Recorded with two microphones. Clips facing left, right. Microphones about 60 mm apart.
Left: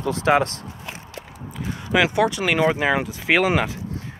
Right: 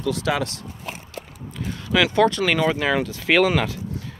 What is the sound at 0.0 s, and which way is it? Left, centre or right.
Speech, left.